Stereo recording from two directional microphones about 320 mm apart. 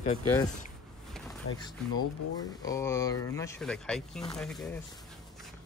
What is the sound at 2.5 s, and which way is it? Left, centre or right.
Speech, centre.